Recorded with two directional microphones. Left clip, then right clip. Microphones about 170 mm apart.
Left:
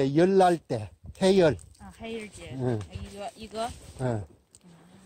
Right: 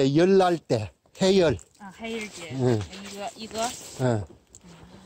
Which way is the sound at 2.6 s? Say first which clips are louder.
Right 6 dB; 40° right (ahead or behind).